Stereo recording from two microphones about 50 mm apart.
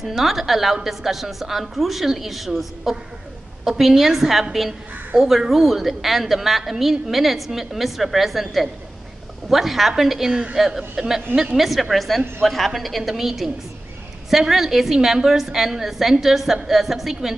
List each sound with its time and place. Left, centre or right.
0.0 s a woman's voice: centre